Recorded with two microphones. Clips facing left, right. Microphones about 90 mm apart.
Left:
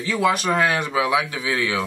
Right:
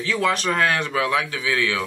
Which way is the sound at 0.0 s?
10° left (ahead or behind).